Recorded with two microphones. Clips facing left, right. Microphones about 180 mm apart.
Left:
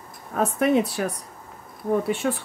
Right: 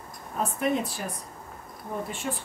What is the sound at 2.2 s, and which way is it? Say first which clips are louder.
Speech: left 8 dB; 90° left.